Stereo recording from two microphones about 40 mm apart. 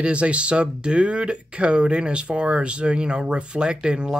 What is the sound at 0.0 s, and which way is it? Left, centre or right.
Speech, right.